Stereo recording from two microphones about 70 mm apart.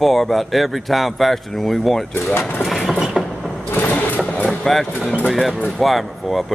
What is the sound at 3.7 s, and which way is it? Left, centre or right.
Mechanisms, left.